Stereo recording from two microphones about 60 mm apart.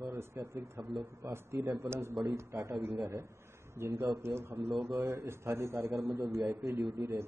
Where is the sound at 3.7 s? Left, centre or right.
Right.